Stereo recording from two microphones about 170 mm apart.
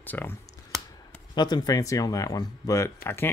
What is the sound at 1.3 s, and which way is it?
Speech, 25° left (ahead or behind).